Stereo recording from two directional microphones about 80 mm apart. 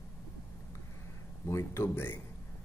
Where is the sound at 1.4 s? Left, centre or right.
Left.